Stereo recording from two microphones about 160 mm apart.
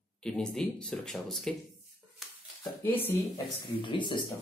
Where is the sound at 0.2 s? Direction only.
5° left (ahead or behind).